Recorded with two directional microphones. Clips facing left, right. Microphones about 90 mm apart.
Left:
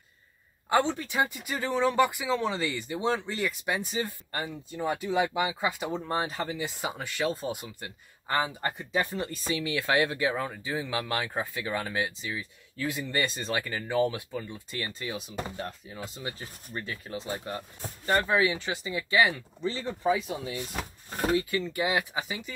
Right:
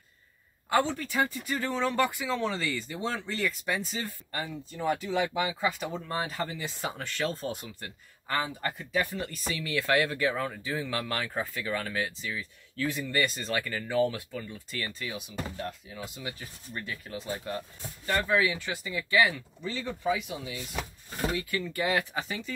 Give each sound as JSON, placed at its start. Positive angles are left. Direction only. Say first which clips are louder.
{"t": 0.7, "sound": "speech", "louder": "left 1 dB", "side_deg": 20}
{"t": 21.5, "sound": "speech", "louder": "left 1 dB", "side_deg": 20}